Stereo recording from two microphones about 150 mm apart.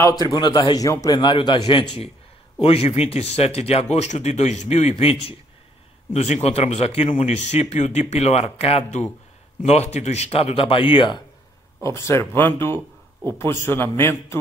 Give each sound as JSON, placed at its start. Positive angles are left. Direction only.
{"t": 0.2, "sound": "a man's voice", "side_deg": 30}
{"t": 11.8, "sound": "a man's voice", "side_deg": 20}